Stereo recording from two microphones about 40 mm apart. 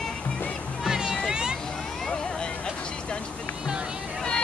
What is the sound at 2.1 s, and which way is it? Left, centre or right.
Vehicle, centre.